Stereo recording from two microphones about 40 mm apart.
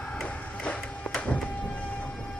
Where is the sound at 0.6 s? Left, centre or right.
Left.